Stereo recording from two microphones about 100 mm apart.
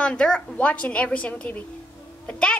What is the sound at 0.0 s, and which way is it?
A woman's voice, 10° left (ahead or behind).